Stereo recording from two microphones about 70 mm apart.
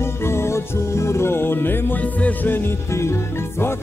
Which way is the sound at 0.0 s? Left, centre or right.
Left.